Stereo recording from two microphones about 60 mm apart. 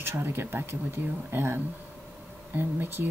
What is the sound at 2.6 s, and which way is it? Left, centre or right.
Speech, right.